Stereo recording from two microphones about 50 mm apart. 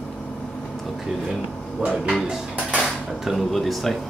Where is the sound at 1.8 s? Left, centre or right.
Right.